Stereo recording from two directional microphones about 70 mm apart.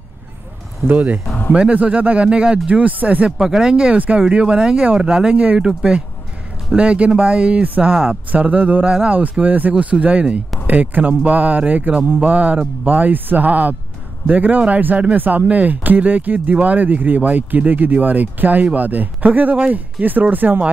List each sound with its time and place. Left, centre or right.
0.8 s speech: right
3.3 s speech: centre; by 20.7 s right